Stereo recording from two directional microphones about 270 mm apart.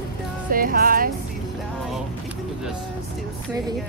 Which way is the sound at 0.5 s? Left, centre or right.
Right.